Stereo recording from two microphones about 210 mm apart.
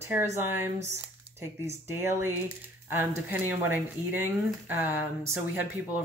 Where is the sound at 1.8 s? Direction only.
10° right (ahead or behind).